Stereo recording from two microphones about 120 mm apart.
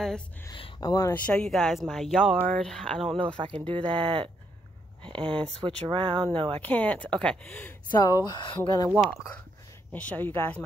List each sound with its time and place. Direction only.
0.7 s speech: 30° left (ahead or behind)
1.1 s speech: 10° left (ahead or behind)
3.6 s speech: 45° right (ahead or behind)
6.6 s speech: 10° left (ahead or behind)
8.0 s speech: 35° left (ahead or behind)
9.9 s speech: 15° left (ahead or behind)